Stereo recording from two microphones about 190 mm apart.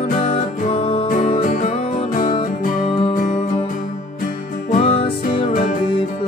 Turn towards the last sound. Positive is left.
turn(degrees=30)  # may be behind; listen again after turning